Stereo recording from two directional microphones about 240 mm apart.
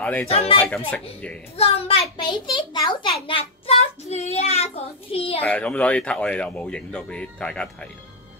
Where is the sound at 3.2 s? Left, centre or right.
Left.